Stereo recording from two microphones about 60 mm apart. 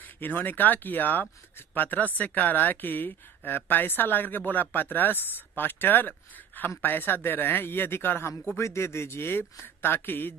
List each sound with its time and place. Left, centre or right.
0.0 s speech: left
8.5 s speech: left